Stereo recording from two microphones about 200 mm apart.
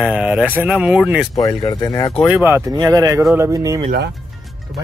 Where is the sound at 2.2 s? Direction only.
10° right (ahead or behind).